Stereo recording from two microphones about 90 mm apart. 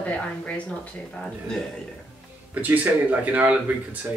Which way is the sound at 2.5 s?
20° right (ahead or behind).